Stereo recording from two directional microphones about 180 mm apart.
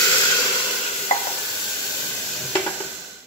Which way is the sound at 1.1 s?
40° left (ahead or behind).